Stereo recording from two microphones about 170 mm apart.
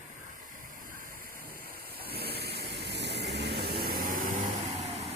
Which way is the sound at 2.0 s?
65° right (ahead or behind).